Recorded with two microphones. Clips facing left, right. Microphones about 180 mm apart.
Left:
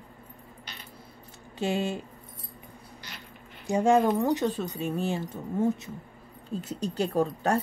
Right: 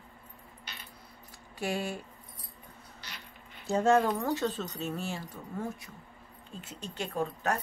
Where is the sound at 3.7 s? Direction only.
15° left (ahead or behind).